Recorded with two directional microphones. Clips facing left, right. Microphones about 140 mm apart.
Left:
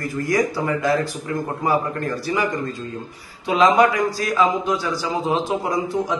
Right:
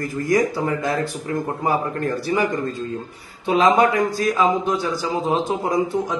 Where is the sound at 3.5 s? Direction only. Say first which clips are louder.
Even; 25° right (ahead or behind).